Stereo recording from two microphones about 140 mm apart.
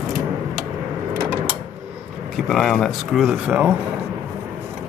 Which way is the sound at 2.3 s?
Centre (ahead or behind).